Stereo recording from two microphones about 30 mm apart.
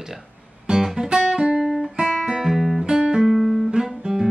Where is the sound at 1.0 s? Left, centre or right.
Right.